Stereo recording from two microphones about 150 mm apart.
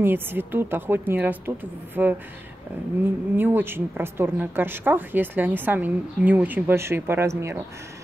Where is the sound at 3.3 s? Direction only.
15° right (ahead or behind).